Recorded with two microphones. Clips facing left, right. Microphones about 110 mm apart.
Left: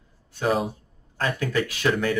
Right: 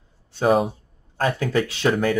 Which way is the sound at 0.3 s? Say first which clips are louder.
Right 5 dB; 30° right (ahead or behind).